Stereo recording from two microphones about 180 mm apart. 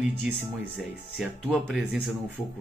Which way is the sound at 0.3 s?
5° right (ahead or behind).